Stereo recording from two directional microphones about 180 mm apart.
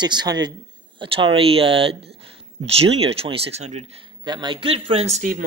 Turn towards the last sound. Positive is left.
turn(degrees=-35)  # may be behind; listen again after turning